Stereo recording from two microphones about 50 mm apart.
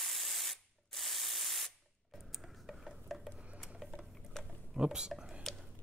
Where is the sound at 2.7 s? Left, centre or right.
Centre.